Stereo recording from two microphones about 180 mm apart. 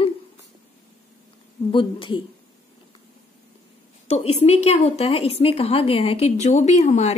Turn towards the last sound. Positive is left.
turn(degrees=40)  # may be behind; listen again after turning